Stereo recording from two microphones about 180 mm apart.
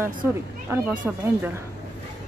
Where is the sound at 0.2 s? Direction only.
15° right (ahead or behind).